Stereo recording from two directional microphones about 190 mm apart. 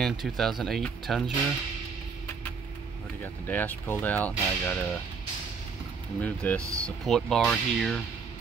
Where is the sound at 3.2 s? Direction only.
10° left (ahead or behind).